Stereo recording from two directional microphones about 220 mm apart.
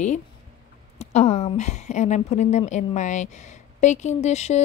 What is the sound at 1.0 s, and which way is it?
Speech, 30° left (ahead or behind).